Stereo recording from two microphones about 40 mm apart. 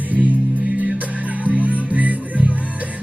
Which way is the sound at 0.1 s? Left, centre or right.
Right.